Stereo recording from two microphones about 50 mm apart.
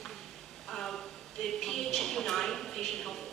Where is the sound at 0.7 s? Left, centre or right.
Centre.